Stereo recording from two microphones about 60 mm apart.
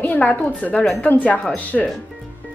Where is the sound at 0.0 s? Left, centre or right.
Left.